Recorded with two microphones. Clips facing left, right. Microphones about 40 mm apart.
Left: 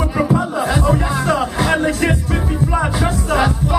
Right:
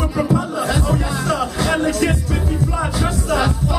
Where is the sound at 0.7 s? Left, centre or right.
Left.